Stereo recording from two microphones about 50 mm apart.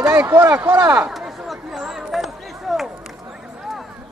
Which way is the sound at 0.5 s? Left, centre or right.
Right.